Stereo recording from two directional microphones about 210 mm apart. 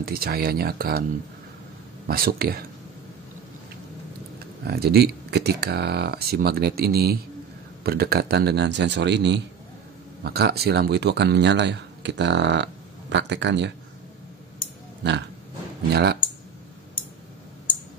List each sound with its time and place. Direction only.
0.0 s speech: 45° right (ahead or behind)
2.0 s speech: 45° right (ahead or behind)
4.6 s speech: 50° right (ahead or behind)
15.0 s speech: 55° right (ahead or behind)